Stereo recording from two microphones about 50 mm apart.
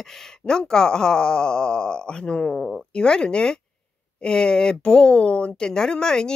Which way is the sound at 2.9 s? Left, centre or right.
Centre.